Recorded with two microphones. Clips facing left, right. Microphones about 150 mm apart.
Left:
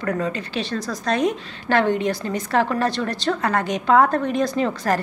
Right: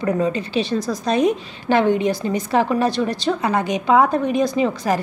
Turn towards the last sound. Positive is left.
turn(degrees=-5)  # may be behind; listen again after turning